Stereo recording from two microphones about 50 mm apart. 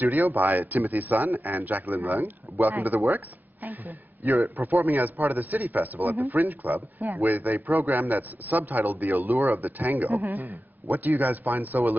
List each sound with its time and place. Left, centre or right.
0.0 s a man's voice: right
4.3 s a man's voice: right
7.0 s speech: right
7.2 s a man's voice: right